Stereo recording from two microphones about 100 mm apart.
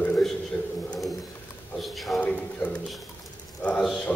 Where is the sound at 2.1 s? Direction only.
15° left (ahead or behind).